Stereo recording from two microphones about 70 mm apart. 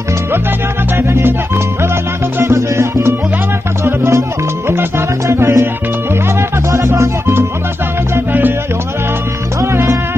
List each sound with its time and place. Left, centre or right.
0.9 s salsa music: right
2.5 s music: right
6.7 s music: right
9.6 s music: right